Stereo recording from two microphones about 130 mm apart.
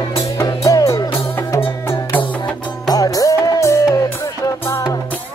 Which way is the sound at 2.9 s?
25° left (ahead or behind).